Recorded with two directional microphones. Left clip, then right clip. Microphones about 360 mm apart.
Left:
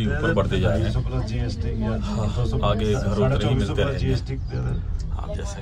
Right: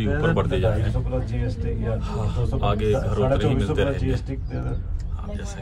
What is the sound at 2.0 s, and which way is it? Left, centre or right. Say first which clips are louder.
A man's voice: left 1 dB; centre.